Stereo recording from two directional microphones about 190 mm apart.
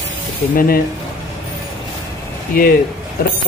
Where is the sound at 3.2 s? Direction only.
50° left (ahead or behind).